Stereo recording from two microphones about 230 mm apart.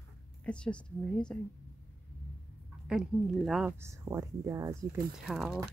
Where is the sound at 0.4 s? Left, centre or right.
Centre.